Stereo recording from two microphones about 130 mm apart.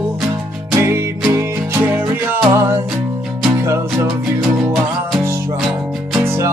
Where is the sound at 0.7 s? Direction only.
20° right (ahead or behind).